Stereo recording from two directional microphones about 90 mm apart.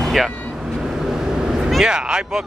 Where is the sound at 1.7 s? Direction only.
5° right (ahead or behind).